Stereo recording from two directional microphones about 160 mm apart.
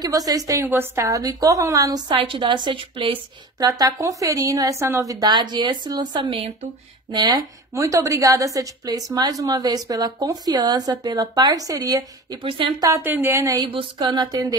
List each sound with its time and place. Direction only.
0.0 s a woman's voice: 20° right (ahead or behind)
7.2 s a woman's voice: 25° right (ahead or behind)
12.4 s speech: 35° right (ahead or behind)
12.9 s speech: 15° right (ahead or behind)
13.7 s a woman's voice: 30° right (ahead or behind)